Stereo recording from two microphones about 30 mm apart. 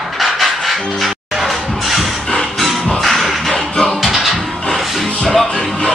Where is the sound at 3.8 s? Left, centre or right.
Centre.